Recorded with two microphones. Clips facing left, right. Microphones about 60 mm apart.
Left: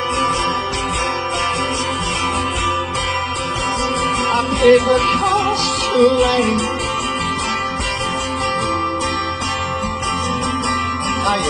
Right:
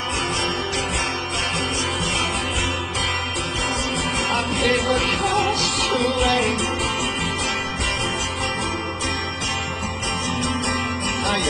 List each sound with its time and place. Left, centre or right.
4.3 s music: centre